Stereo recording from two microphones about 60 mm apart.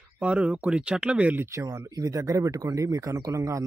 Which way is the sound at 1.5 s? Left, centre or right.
Right.